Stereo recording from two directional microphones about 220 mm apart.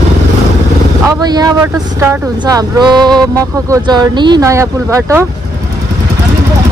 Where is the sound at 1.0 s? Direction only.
20° right (ahead or behind).